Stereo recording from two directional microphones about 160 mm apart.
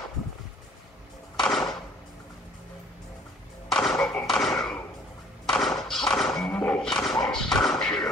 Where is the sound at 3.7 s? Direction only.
5° left (ahead or behind).